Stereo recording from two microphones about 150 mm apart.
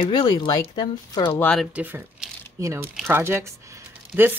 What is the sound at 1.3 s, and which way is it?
Speech, 10° left (ahead or behind).